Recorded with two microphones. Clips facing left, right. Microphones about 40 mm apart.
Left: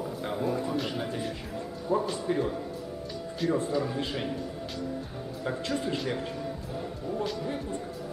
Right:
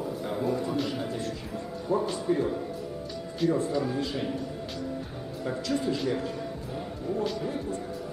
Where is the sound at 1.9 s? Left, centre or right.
Left.